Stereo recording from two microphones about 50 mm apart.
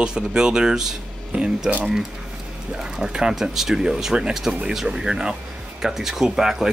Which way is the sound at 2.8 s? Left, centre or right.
Centre.